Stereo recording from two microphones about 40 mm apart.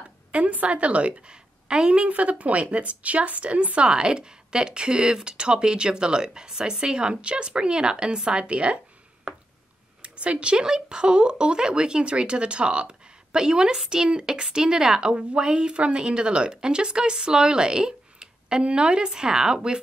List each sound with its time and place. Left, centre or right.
0.3 s speech: right
9.3 s a sound: centre
10.0 s speech: right